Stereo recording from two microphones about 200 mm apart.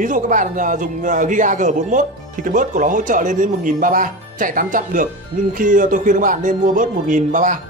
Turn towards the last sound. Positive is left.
turn(degrees=-40)  # may be behind; listen again after turning